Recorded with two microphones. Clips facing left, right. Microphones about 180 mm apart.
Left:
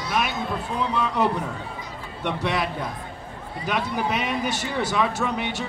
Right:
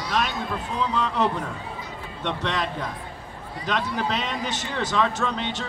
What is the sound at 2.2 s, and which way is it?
Speech, 10° left (ahead or behind).